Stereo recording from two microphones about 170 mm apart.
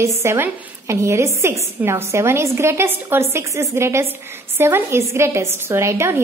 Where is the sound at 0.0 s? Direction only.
15° right (ahead or behind).